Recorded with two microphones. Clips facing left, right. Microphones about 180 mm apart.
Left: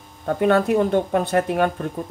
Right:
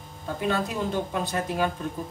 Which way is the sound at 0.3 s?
60° left (ahead or behind).